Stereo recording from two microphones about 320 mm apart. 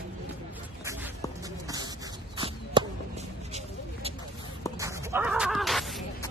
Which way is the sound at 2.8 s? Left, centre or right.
Centre.